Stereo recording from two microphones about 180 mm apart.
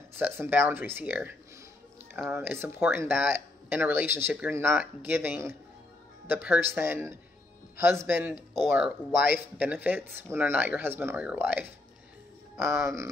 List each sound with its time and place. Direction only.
0.2 s speech: 10° right (ahead or behind)
2.3 s speech: 15° right (ahead or behind)